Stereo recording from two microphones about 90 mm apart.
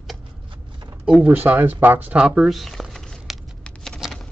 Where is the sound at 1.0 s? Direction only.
15° right (ahead or behind); by 4.3 s centre (ahead or behind).